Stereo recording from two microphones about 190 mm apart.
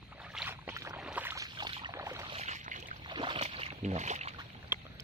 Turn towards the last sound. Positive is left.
turn(degrees=-10)  # may be behind; listen again after turning